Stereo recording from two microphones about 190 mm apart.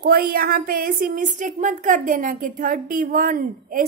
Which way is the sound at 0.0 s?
50° right (ahead or behind).